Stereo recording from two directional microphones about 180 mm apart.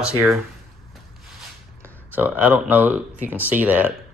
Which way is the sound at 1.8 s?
10° right (ahead or behind).